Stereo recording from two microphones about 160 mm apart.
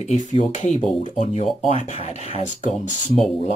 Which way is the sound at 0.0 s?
50° left (ahead or behind).